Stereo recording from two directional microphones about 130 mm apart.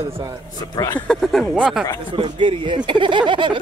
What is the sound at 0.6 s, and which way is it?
Speech, 30° left (ahead or behind).